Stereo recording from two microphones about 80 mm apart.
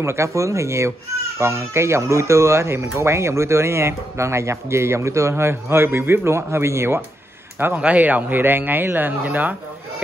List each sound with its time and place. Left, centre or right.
0.0 s speech: right; by 10.0 s centre